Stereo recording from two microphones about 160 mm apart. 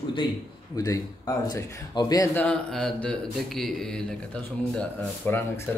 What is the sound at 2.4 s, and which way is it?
A man's voice, 5° left (ahead or behind).